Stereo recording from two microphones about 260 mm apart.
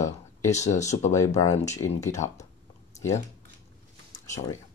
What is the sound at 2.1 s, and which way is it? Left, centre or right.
Speech, left.